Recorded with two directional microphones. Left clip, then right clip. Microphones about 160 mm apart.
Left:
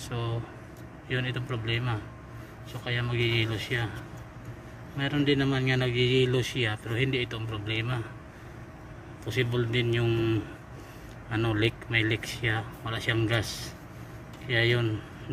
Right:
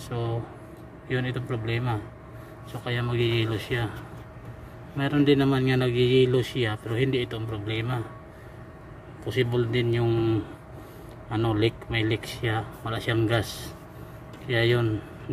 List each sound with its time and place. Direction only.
0.1 s speech: 20° right (ahead or behind)
4.9 s speech: 30° right (ahead or behind)
9.2 s speech: 20° right (ahead or behind)